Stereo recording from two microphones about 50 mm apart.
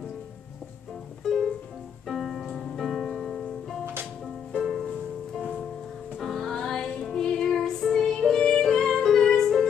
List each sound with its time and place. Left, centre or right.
1.2 s music: centre
6.1 s music: centre